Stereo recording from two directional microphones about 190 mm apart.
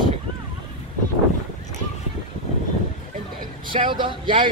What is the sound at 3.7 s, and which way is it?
Speech, 25° right (ahead or behind).